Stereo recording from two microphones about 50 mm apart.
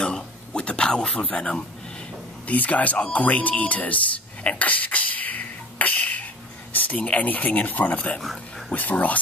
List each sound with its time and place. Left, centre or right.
0.0 s a sound: centre
2.4 s speech: left
8.2 s speech: centre
8.7 s speech: left